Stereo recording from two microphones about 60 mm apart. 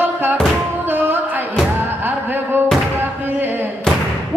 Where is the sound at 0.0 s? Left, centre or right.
Right.